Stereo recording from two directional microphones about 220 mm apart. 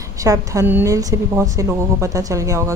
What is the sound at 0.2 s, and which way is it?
Speech, 15° right (ahead or behind).